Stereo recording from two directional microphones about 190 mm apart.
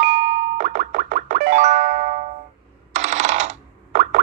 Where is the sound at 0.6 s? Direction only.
45° right (ahead or behind).